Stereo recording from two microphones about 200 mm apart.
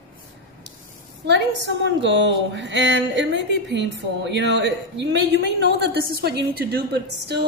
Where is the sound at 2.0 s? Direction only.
65° right (ahead or behind).